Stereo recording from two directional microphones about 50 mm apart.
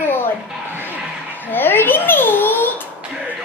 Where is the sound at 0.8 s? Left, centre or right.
Left.